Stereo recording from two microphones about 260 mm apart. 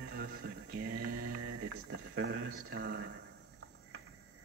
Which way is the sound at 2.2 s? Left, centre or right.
Right.